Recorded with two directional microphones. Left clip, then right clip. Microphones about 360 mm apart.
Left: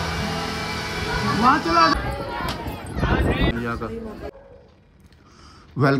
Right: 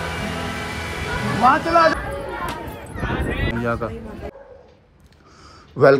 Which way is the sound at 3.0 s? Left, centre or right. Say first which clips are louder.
Left 3 dB; centre.